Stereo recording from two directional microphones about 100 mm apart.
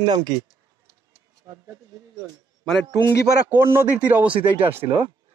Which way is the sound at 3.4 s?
25° right (ahead or behind).